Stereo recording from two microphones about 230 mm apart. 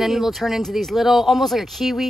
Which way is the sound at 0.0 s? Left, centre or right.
Centre.